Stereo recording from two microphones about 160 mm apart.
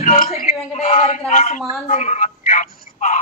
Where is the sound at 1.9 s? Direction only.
50° left (ahead or behind).